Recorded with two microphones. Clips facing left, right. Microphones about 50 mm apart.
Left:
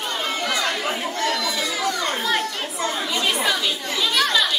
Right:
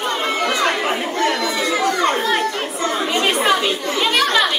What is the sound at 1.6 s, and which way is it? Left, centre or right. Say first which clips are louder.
Chatter: right 6 dB; right.